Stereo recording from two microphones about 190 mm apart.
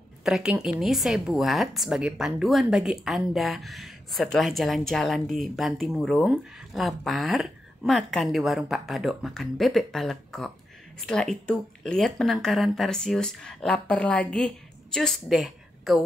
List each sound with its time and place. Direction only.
0.2 s a woman's voice: 5° right (ahead or behind)